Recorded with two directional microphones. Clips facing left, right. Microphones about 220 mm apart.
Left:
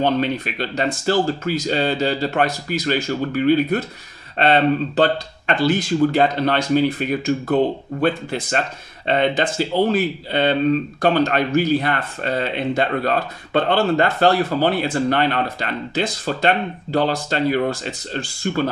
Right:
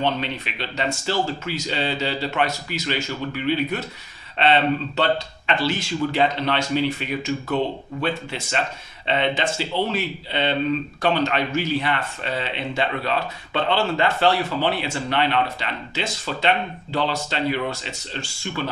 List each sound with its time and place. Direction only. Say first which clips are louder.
0.0 s speech: left 6 dB; 45° left (ahead or behind)